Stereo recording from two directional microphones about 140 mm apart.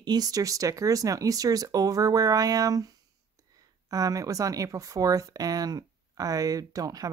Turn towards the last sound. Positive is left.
turn(degrees=-25)  # may be behind; listen again after turning